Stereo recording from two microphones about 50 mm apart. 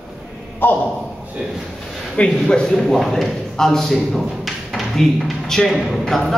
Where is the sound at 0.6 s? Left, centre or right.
Left.